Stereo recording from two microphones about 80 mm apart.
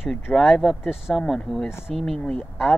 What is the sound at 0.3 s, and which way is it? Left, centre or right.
Speech, centre.